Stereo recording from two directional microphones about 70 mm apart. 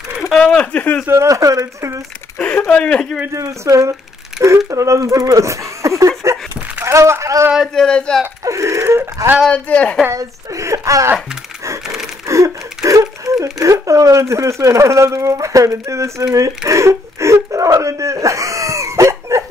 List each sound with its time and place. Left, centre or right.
0.2 s a sound: centre
0.6 s speech: centre
1.0 s speech: right
2.7 s speech: centre
3.3 s speech: right
7.6 s speech: centre
8.5 s wail: right
9.5 s speech: centre
10.1 s speech: right
12.3 s a sound: right
12.8 s speech: right